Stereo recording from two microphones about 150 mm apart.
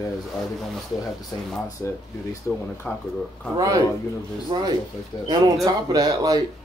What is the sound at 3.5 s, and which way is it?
Speech, 25° right (ahead or behind).